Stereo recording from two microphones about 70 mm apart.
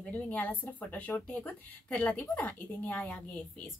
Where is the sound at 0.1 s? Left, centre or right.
Left.